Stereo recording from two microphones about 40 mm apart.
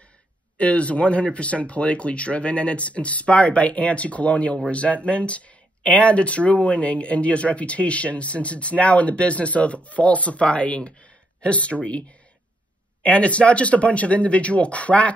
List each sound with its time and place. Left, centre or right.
0.6 s speech: left